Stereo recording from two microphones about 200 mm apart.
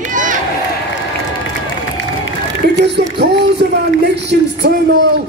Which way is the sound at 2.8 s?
60° right (ahead or behind).